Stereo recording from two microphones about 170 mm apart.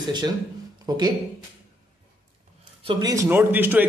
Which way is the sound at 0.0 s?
25° right (ahead or behind).